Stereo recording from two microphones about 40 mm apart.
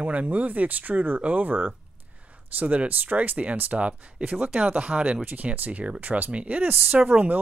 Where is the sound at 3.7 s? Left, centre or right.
Right.